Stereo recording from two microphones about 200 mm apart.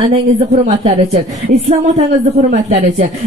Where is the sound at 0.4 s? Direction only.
30° right (ahead or behind).